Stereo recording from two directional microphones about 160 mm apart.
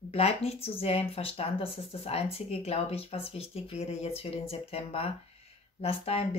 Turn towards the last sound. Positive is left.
turn(degrees=40)  # may be behind; listen again after turning